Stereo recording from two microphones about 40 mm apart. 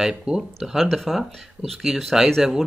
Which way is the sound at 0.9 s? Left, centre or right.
Centre.